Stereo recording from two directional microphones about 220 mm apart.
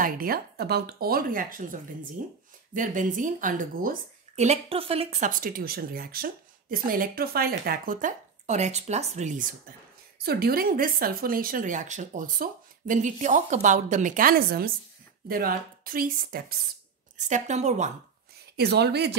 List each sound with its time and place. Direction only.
0.0 s speech: 40° right (ahead or behind)
5.4 s speech: 40° right (ahead or behind)
18.6 s speech: 50° right (ahead or behind)